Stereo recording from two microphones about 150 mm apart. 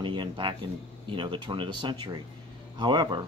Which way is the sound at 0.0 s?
35° right (ahead or behind).